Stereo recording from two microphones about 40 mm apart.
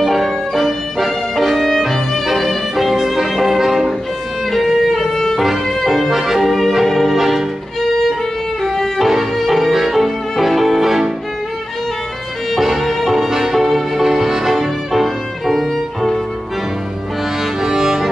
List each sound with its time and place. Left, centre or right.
0.0 s music: centre
4.5 s music: centre
6.0 s music: centre
7.2 s violin: centre
8.6 s violin: centre
9.1 s music: centre
12.5 s music: centre
17.6 s music: centre